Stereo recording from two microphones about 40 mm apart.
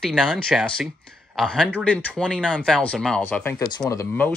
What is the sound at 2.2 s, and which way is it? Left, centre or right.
Speech, left.